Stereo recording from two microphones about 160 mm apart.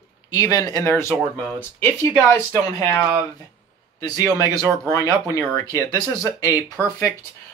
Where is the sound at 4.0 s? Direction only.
25° left (ahead or behind).